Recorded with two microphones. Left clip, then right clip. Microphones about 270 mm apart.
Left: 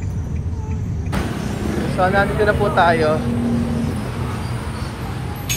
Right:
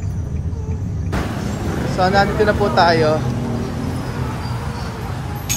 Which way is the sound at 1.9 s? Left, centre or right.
Centre.